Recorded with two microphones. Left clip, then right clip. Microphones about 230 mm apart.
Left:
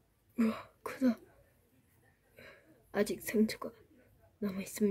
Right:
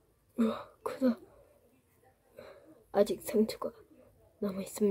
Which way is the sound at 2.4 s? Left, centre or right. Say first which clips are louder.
Right 4 dB; centre.